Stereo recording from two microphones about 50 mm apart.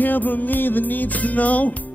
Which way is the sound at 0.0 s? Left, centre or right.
Left.